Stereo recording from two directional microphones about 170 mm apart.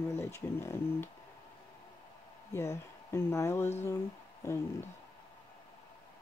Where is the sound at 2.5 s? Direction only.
15° left (ahead or behind).